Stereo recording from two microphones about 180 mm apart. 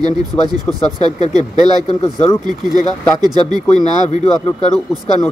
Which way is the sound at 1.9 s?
25° left (ahead or behind).